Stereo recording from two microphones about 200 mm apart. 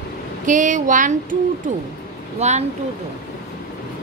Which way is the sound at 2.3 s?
35° right (ahead or behind).